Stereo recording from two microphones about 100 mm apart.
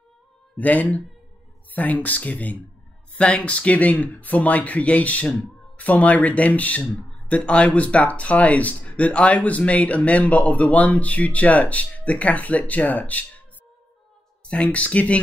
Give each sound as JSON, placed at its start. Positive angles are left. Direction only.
{"t": 0.6, "sound": "speech", "side_deg": 15}
{"t": 14.5, "sound": "speech", "side_deg": 10}